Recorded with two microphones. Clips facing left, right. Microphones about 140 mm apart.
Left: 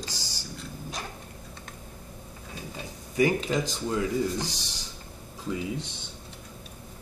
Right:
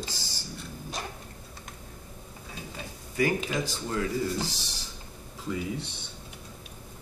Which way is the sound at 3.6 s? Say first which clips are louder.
Left 2 dB; 15° left (ahead or behind).